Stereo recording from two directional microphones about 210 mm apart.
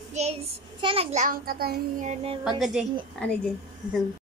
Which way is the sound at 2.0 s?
30° right (ahead or behind).